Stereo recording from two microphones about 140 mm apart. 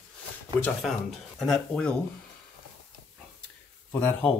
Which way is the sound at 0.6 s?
Centre (ahead or behind).